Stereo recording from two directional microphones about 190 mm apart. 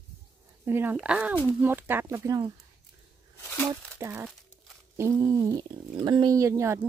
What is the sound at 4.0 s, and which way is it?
Speech, 10° right (ahead or behind).